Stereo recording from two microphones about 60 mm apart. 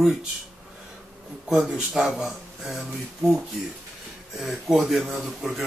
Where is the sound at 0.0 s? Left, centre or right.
Centre.